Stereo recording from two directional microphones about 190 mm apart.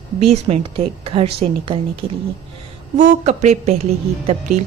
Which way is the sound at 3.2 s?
35° right (ahead or behind).